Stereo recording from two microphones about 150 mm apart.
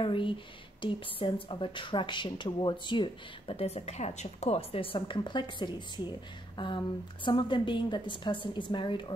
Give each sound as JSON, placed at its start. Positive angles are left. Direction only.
{"t": 0.0, "sound": "speech", "side_deg": 35}
{"t": 6.5, "sound": "a sound", "side_deg": 30}
{"t": 7.2, "sound": "speech", "side_deg": 30}